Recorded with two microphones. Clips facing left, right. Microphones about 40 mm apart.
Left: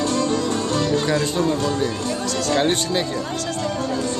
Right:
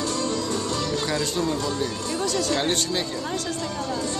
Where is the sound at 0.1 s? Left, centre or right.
Left.